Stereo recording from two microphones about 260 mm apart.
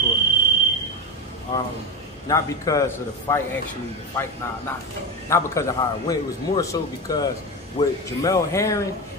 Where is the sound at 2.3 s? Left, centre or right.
Centre.